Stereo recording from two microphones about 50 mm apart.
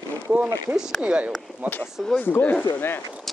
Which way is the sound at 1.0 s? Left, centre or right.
Right.